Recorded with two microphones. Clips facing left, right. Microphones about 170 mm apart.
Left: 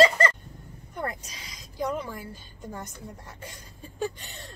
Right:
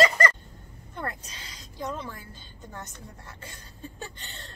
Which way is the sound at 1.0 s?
10° left (ahead or behind).